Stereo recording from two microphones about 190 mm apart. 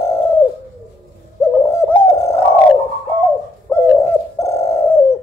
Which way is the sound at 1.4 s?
15° left (ahead or behind).